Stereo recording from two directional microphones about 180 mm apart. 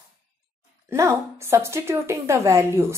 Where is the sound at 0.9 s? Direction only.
15° right (ahead or behind).